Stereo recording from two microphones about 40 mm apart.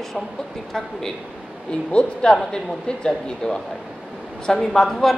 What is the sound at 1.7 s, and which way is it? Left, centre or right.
A woman's voice, left.